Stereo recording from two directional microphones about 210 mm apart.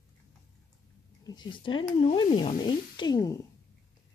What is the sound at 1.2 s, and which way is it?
Speech, 20° left (ahead or behind).